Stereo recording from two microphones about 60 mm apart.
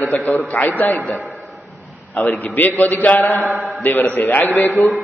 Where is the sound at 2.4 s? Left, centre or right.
Left.